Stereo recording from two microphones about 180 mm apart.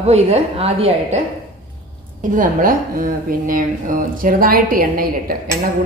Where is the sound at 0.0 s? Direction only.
35° right (ahead or behind).